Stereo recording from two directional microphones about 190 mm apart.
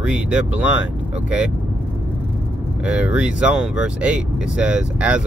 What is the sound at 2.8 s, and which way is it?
Speech, 5° right (ahead or behind).